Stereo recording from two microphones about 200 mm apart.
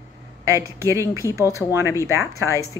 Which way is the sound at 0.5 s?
15° right (ahead or behind).